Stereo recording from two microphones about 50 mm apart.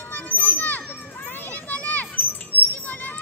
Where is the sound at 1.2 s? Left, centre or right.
Left.